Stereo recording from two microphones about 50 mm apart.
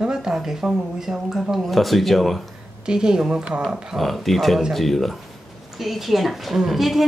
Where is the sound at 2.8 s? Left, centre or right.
Centre.